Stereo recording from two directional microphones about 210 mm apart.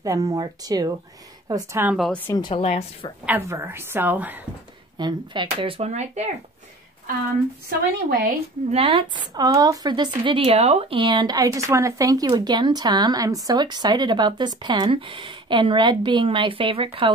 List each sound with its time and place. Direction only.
0.0 s a woman's voice: 15° right (ahead or behind); by 2.4 s 10° left (ahead or behind)
2.4 s a woman's voice: 25° left (ahead or behind)
3.3 s a woman's voice: 10° right (ahead or behind)
4.9 s speech: 20° right (ahead or behind)
8.1 s speech: 45° right (ahead or behind)
8.7 s speech: 30° right (ahead or behind)
9.3 s speech: 15° right (ahead or behind)